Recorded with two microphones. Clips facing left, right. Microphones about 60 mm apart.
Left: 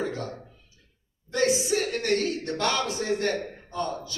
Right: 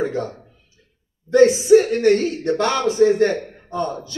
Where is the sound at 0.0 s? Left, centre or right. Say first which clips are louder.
Right 8 dB; right.